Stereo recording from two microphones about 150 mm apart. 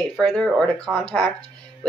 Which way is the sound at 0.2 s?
5° left (ahead or behind).